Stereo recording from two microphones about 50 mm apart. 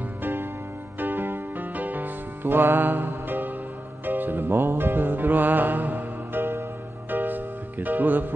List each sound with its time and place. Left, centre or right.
0.2 s music: right